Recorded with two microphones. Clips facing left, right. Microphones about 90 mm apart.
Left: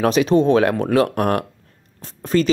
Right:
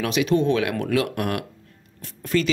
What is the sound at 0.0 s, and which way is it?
Speech, 35° left (ahead or behind).